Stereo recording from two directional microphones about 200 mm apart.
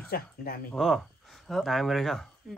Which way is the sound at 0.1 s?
50° left (ahead or behind).